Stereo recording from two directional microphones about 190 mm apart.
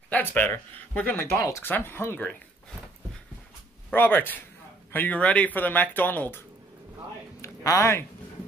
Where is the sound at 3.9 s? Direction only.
10° left (ahead or behind).